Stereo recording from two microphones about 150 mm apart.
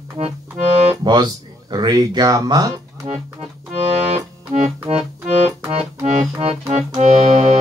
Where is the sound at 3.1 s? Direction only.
45° right (ahead or behind).